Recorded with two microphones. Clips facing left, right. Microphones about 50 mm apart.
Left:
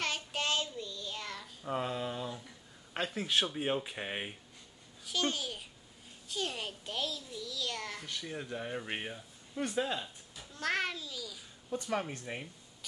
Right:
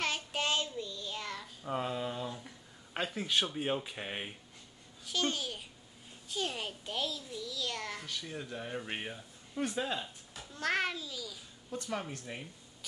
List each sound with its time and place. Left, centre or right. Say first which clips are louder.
0.0 s child singing: right 1 dB; centre
2.9 s speech: even; centre
8.1 s speech: left 1 dB; centre
11.7 s speech: left 3 dB; centre